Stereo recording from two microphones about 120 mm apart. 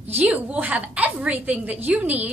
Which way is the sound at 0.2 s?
15° right (ahead or behind).